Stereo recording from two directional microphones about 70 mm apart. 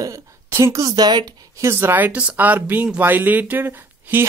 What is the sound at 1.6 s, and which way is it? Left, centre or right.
Speech, right.